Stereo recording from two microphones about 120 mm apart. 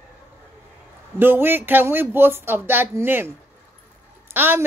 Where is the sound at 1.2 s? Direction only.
20° right (ahead or behind).